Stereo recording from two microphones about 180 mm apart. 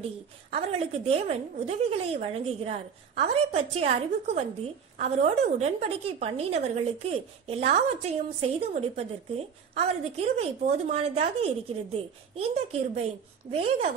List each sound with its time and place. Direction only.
0.5 s a woman's voice: 35° right (ahead or behind)